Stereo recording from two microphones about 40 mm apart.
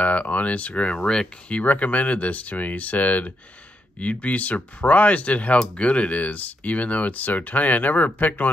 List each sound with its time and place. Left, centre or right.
0.0 s speech: left
1.5 s speech: left